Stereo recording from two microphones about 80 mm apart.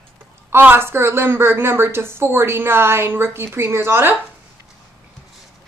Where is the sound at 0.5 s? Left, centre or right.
Right.